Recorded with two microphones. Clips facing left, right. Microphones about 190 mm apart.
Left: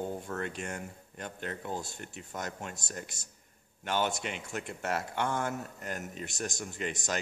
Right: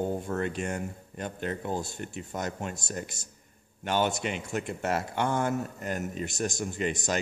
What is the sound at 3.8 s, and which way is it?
Speech, 30° right (ahead or behind).